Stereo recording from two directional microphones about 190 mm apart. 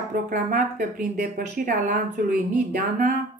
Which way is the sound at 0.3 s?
45° right (ahead or behind).